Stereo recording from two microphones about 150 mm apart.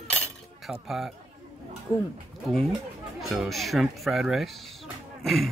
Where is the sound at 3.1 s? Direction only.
Centre (ahead or behind).